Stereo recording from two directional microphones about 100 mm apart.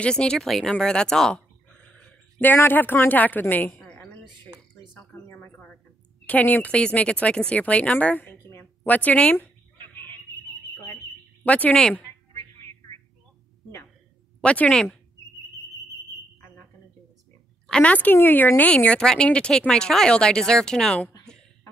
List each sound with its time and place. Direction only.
0.0 s speech: 10° left (ahead or behind)
2.4 s a woman's voice: 20° left (ahead or behind)
5.1 s a sound: 25° left (ahead or behind)
6.2 s a woman's voice: 15° left (ahead or behind)
8.4 s a sound: 25° left (ahead or behind)
8.8 s a sound: 15° left (ahead or behind)
11.4 s a woman's voice: 15° left (ahead or behind)
14.4 s a woman's voice: 10° left (ahead or behind)
17.6 s a woman's voice: 10° left (ahead or behind)